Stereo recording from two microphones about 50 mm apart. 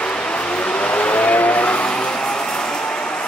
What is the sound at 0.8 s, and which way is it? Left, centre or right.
Vehicle, left.